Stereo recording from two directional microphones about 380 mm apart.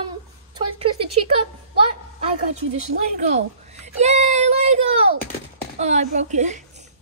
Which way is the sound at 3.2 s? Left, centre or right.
Centre.